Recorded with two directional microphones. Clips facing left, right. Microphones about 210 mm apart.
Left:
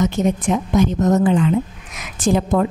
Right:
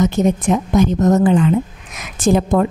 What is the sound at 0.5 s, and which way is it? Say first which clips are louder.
A woman's voice: right 2 dB; 40° right (ahead or behind).